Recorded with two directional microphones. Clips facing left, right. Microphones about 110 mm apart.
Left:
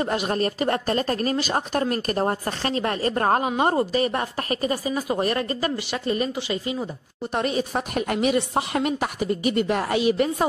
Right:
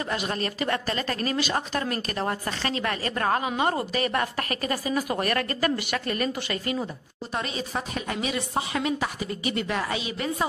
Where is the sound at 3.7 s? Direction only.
30° left (ahead or behind).